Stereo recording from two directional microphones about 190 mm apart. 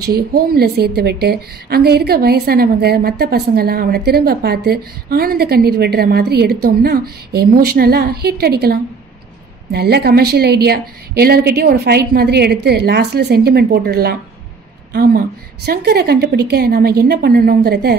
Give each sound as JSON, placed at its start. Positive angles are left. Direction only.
{"t": 0.3, "sound": "a woman's voice", "side_deg": -55}